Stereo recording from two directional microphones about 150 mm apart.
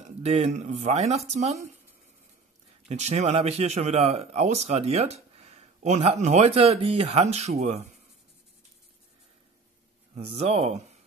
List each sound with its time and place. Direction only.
0.2 s speech: 45° right (ahead or behind)
2.9 s speech: 45° right (ahead or behind)
10.1 s speech: 45° right (ahead or behind)